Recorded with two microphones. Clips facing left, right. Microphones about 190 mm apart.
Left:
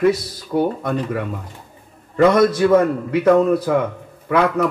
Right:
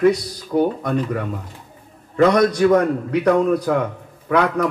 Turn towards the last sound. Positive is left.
turn(degrees=5)  # may be behind; listen again after turning